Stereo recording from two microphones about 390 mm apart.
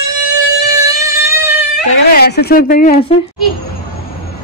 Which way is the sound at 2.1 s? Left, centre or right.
Left.